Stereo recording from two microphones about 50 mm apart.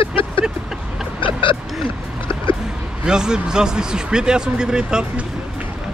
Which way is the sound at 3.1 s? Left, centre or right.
Centre.